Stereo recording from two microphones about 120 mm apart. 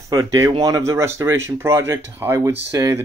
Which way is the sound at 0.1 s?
30° right (ahead or behind).